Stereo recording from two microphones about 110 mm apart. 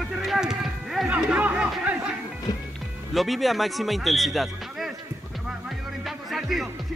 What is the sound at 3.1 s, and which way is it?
Speech, centre (ahead or behind).